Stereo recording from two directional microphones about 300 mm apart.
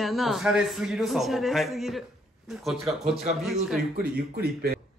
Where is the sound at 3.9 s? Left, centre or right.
Right.